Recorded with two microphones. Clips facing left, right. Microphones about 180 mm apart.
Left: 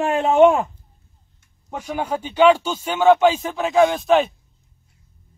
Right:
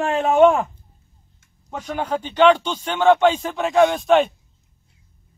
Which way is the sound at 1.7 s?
10° left (ahead or behind).